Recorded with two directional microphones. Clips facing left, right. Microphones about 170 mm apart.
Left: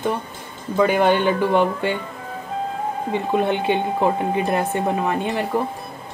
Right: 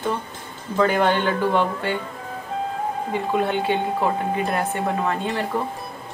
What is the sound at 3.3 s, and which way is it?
Speech, 20° left (ahead or behind).